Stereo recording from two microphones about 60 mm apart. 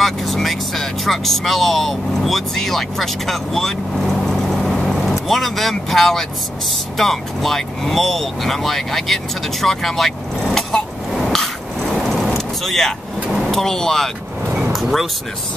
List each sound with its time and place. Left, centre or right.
0.0 s speech: centre
11.9 s vehicle: centre
13.5 s speech: centre
14.4 s vehicle: centre
14.7 s speech: centre